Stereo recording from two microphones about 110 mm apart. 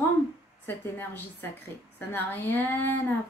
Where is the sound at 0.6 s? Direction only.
20° left (ahead or behind).